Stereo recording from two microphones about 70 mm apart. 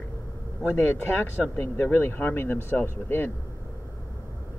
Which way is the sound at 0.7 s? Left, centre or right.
Left.